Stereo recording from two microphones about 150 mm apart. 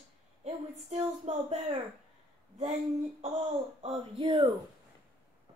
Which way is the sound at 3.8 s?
40° right (ahead or behind).